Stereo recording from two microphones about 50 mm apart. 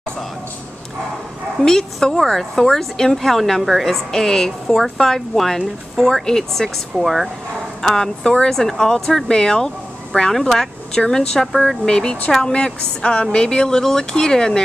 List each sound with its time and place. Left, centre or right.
1.6 s speech: centre
7.0 s speech: centre
7.8 s speech: centre
11.8 s speech: centre